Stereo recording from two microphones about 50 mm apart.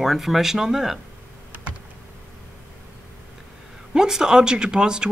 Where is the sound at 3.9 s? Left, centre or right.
Centre.